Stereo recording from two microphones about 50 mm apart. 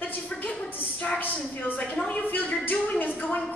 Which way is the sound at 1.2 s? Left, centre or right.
Left.